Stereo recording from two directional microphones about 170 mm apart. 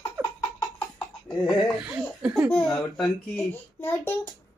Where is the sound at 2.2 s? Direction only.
5° right (ahead or behind).